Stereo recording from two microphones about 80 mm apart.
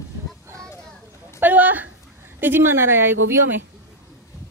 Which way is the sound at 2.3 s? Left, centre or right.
Right.